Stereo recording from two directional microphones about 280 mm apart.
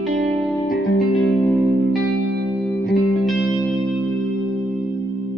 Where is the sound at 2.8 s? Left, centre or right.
Left.